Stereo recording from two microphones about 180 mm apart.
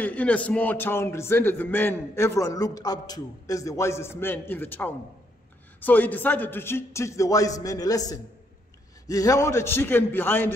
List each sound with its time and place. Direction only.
0.0 s speech: 5° left (ahead or behind)